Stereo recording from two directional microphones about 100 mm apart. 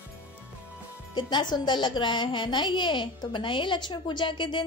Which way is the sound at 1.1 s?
50° left (ahead or behind).